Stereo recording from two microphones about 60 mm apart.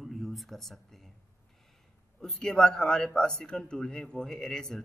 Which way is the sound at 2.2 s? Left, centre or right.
Centre.